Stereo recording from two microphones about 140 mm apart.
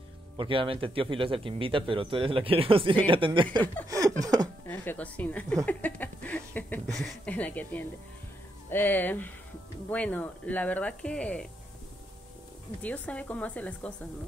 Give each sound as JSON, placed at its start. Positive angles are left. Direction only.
{"t": 0.4, "sound": "speech", "side_deg": -40}
{"t": 4.2, "sound": "speech", "side_deg": -25}
{"t": 4.6, "sound": "speech", "side_deg": 10}
{"t": 5.7, "sound": "a sound", "side_deg": 10}
{"t": 7.0, "sound": "speech", "side_deg": 5}
{"t": 12.8, "sound": "speech", "side_deg": 10}